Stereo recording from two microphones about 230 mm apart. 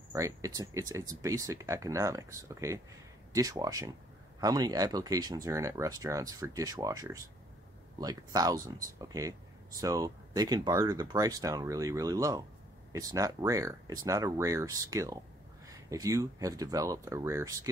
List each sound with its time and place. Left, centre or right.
0.1 s speech: centre